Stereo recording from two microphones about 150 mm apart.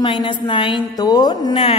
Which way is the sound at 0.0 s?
30° left (ahead or behind).